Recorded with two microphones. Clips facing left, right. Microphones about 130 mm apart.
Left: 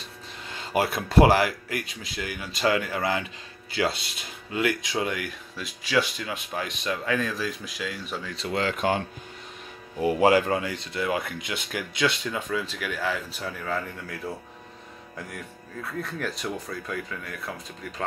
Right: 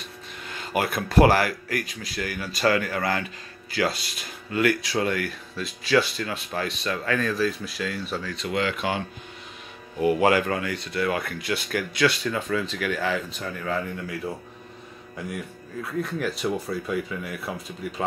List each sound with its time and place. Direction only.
0.5 s speech: 25° left (ahead or behind)
9.9 s speech: 30° left (ahead or behind); by 17.5 s 10° right (ahead or behind)